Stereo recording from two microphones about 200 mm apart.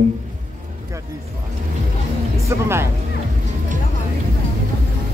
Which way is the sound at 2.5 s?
10° right (ahead or behind).